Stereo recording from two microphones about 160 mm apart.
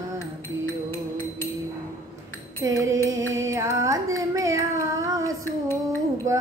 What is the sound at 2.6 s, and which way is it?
Music, 20° right (ahead or behind).